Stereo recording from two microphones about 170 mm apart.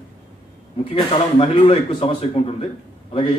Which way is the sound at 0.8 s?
30° left (ahead or behind).